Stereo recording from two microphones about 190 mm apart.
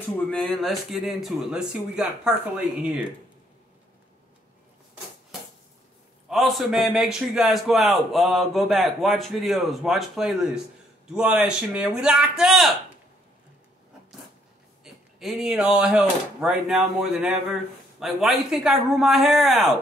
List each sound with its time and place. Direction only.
0.3 s speech: centre (ahead or behind)
6.2 s speech: centre (ahead or behind)
15.1 s speech: centre (ahead or behind)